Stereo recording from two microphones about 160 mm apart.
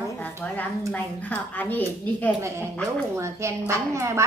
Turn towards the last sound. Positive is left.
turn(degrees=-20)  # may be behind; listen again after turning